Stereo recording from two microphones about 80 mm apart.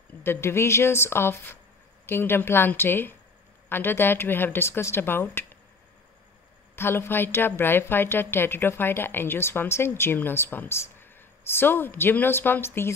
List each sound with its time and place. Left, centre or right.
0.2 s a woman's voice: left
6.7 s a woman's voice: left